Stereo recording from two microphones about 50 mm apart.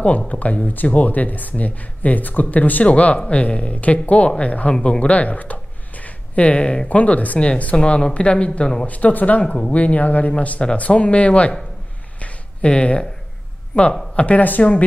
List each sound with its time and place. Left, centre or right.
0.3 s speech: left
8.8 s speech: left
12.2 s a sound: left
13.7 s speech: left